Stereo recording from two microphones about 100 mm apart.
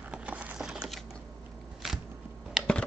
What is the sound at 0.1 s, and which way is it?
Wood, 15° right (ahead or behind).